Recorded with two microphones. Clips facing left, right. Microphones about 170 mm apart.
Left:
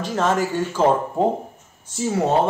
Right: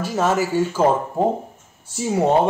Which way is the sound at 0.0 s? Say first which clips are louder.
Right 1 dB; 10° right (ahead or behind).